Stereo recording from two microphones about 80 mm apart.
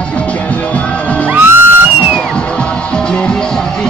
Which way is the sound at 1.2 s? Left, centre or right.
Right.